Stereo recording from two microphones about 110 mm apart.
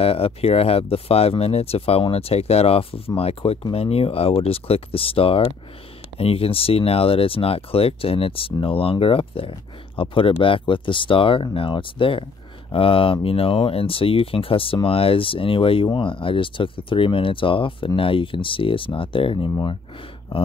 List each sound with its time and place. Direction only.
0.0 s speech: 60° left (ahead or behind)